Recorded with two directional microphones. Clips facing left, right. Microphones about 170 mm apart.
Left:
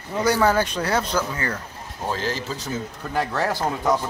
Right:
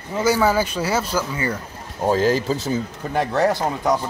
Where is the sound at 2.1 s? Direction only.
40° right (ahead or behind).